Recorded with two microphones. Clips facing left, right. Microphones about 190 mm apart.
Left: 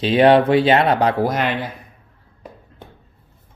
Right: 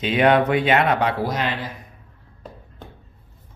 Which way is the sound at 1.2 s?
55° left (ahead or behind).